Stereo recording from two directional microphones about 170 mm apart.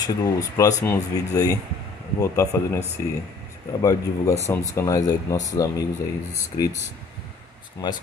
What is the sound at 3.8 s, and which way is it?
Speech, 20° left (ahead or behind).